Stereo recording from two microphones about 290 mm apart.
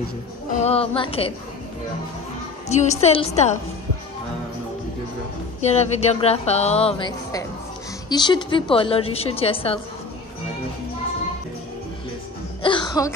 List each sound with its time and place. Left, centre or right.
0.6 s speech: centre
2.7 s speech: left
5.6 s speech: left
12.6 s throat clearing: centre